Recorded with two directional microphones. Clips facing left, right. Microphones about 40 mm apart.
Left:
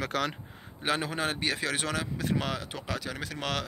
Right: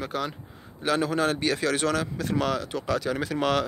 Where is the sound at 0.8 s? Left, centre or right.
Left; by 3.1 s centre.